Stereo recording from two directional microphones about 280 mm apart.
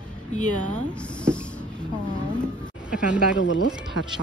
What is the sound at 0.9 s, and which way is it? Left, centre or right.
Speech, centre.